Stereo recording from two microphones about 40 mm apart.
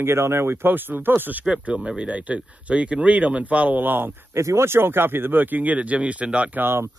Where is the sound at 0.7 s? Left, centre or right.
Right.